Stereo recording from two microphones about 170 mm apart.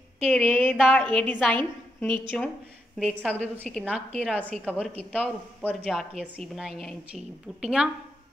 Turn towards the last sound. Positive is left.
turn(degrees=-5)  # may be behind; listen again after turning